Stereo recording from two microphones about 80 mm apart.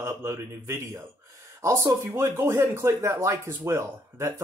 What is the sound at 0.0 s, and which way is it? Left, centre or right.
Speech, right.